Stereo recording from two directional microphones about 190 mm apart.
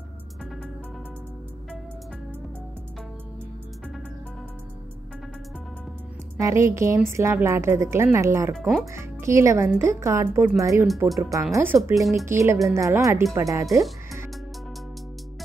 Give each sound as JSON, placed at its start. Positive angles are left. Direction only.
{"t": 6.4, "sound": "a woman's voice", "side_deg": -15}
{"t": 8.5, "sound": "speech", "side_deg": 0}
{"t": 8.9, "sound": "a woman's voice", "side_deg": -15}
{"t": 11.1, "sound": "speech", "side_deg": 0}
{"t": 11.5, "sound": "a woman's voice", "side_deg": -15}
{"t": 12.0, "sound": "speech", "side_deg": 0}
{"t": 12.3, "sound": "a woman's voice", "side_deg": -15}